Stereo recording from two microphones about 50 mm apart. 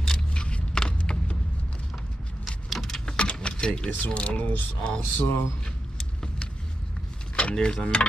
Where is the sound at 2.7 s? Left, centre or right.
Centre.